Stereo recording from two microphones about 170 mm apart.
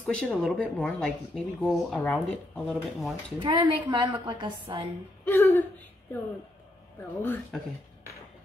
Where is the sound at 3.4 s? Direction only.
30° right (ahead or behind).